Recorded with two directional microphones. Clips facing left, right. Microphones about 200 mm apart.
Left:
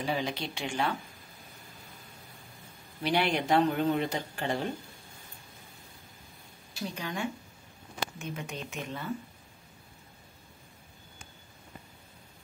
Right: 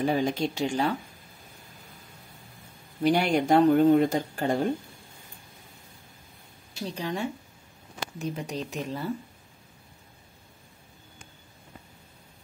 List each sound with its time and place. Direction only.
0.0 s speech: 50° right (ahead or behind)
3.0 s speech: 45° right (ahead or behind)
7.0 s speech: 30° right (ahead or behind)